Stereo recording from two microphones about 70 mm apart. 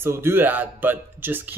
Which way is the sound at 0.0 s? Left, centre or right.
Right.